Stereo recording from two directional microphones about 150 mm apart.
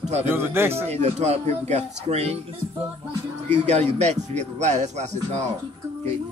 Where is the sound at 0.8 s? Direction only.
45° right (ahead or behind).